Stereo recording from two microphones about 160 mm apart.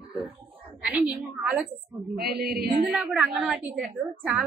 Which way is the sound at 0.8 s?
5° right (ahead or behind).